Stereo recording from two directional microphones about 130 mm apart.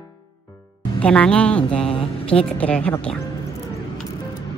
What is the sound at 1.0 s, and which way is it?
Speech, 10° left (ahead or behind).